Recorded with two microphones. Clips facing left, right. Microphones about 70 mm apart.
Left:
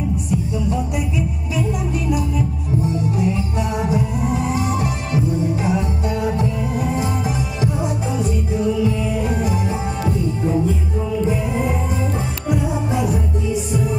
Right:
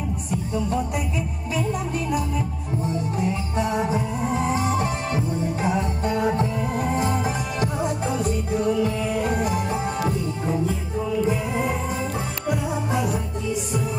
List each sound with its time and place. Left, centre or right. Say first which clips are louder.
0.3 s music: left 1 dB; right
2.0 s music: left 4 dB; right